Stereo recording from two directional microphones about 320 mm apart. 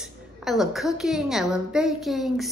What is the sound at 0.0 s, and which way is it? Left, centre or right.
A woman's voice, centre.